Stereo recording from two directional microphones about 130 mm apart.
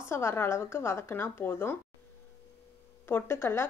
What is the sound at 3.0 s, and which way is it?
Speech, 20° left (ahead or behind).